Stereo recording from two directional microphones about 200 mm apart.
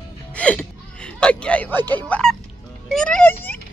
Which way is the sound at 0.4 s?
5° left (ahead or behind).